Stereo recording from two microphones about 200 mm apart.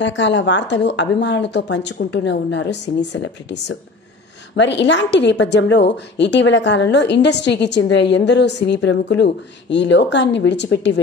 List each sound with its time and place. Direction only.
0.0 s a woman's voice: 65° left (ahead or behind)